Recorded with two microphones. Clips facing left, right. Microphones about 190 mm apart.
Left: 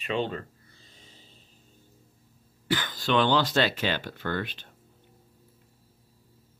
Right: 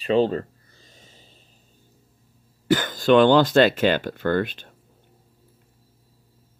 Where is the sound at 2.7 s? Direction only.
45° right (ahead or behind).